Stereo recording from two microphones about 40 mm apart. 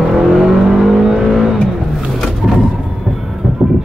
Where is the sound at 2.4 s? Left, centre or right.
Centre.